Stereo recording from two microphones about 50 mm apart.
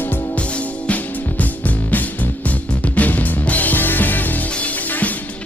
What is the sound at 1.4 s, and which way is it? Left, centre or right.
Music, left.